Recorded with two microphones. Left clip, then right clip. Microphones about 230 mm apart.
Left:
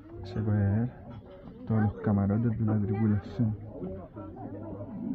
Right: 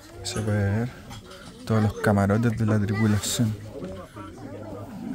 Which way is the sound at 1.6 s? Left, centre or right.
Right.